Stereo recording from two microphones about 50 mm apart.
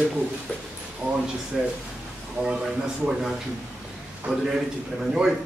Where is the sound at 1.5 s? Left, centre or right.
Centre.